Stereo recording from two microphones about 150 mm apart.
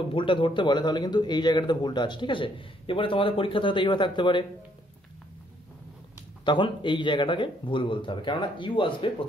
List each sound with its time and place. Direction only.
0.1 s speech: 35° left (ahead or behind)
6.4 s speech: 30° left (ahead or behind)